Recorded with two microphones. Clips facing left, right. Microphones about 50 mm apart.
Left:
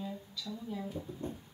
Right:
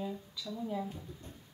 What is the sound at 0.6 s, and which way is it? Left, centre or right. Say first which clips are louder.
Speech: right 5 dB; right.